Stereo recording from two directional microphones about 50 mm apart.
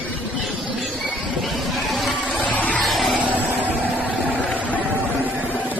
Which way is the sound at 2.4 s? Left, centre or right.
Left.